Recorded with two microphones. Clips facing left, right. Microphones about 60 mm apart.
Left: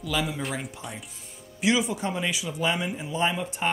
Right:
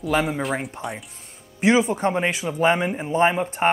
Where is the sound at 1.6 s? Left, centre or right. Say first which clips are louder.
Right 6 dB; right.